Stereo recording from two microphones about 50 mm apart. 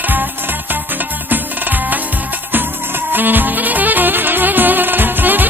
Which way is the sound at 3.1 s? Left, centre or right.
Right.